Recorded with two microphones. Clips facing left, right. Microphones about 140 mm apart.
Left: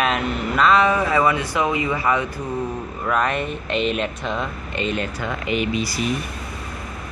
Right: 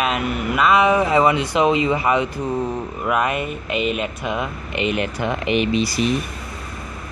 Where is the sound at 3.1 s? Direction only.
10° right (ahead or behind).